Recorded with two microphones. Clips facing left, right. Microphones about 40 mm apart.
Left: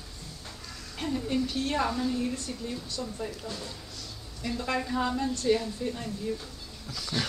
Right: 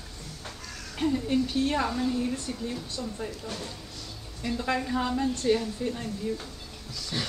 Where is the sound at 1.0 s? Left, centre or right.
Centre.